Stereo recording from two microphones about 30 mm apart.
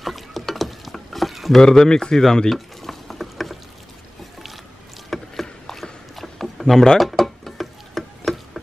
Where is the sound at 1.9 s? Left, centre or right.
Left.